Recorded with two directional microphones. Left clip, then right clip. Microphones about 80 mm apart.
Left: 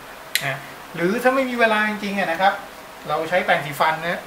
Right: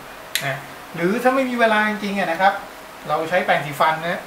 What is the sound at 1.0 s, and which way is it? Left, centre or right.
Speech, centre.